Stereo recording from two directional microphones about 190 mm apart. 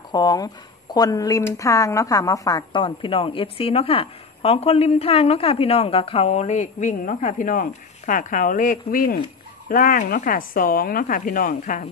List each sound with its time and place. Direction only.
0.1 s a woman's voice: 20° left (ahead or behind); by 11.9 s 45° left (ahead or behind)